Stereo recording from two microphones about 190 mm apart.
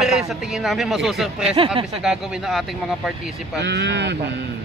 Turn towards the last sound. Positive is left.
turn(degrees=-65)  # may be behind; listen again after turning